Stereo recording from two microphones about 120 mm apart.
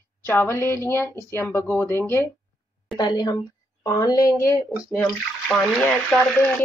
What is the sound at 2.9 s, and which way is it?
A woman's voice, 35° left (ahead or behind).